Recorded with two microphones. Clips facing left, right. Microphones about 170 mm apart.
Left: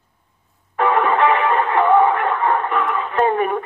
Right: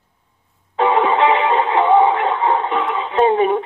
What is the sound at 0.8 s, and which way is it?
Music, 20° right (ahead or behind).